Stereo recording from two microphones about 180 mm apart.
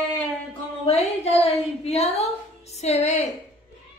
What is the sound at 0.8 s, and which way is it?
A woman's voice, 35° left (ahead or behind).